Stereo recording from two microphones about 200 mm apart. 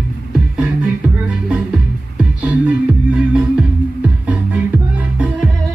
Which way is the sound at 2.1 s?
5° right (ahead or behind).